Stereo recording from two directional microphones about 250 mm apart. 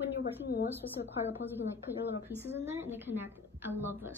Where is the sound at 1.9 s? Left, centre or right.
Centre.